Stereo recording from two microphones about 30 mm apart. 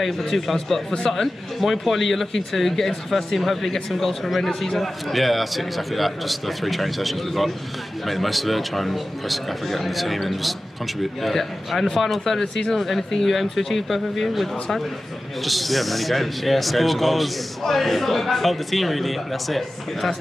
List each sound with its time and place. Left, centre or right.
0.3 s speech: centre